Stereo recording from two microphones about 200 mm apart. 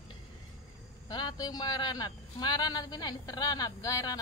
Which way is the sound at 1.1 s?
20° left (ahead or behind).